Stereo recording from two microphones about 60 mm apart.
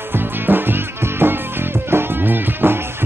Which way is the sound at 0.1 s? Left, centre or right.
Right.